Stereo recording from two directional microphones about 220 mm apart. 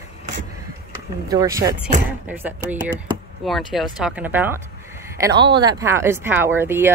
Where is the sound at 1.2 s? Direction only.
15° right (ahead or behind).